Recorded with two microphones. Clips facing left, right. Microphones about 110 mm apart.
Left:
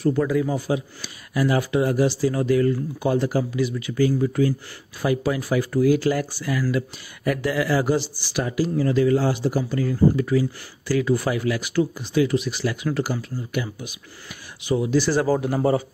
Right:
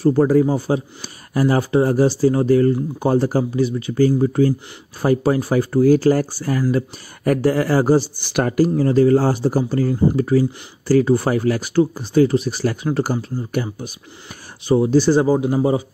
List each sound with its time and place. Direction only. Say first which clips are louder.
0.0 s speech: right 6 dB; 35° right (ahead or behind)
8.2 s speech: right 7 dB; 55° right (ahead or behind)
8.7 s speech: right 3 dB; 35° right (ahead or behind)
15.2 s a man's voice: right 4 dB; 20° right (ahead or behind)